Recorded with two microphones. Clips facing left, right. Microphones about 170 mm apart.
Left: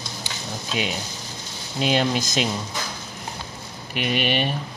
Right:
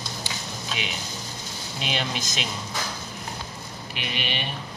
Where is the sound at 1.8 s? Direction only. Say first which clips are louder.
Left 9 dB; 40° left (ahead or behind).